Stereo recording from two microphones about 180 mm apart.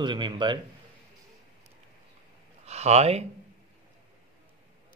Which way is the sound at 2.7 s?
35° right (ahead or behind).